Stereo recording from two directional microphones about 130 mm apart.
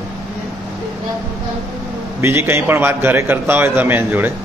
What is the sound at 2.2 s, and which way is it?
A man's voice, 20° right (ahead or behind).